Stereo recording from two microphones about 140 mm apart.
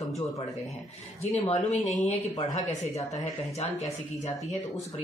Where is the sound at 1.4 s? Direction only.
55° left (ahead or behind).